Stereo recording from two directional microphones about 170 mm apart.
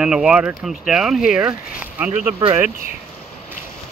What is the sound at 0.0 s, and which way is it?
Speech, 5° right (ahead or behind).